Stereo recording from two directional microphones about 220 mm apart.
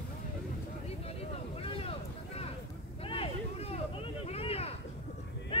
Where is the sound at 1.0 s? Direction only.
25° left (ahead or behind).